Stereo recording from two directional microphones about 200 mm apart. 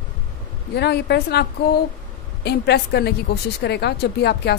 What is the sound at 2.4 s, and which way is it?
A woman's voice, 55° left (ahead or behind).